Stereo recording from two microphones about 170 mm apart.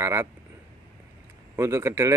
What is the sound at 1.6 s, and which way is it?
Speech, 15° right (ahead or behind).